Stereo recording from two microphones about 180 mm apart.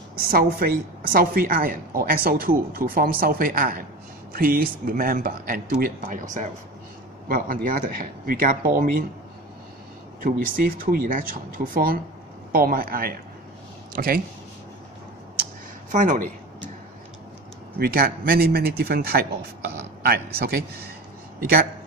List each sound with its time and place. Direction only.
0.2 s a woman's voice: 55° right (ahead or behind)
7.2 s a woman's voice: 50° right (ahead or behind)
10.2 s a woman's voice: 50° right (ahead or behind)
15.9 s a woman's voice: 45° right (ahead or behind)
17.7 s a man's voice: 60° right (ahead or behind)